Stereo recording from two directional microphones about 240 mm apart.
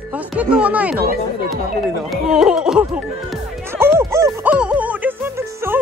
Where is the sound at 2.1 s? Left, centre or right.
Centre.